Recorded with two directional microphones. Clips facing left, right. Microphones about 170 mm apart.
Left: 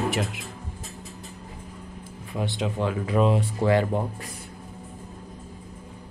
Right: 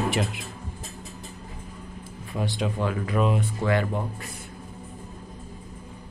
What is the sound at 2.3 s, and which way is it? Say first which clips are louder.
Speech: even; 20° left (ahead or behind).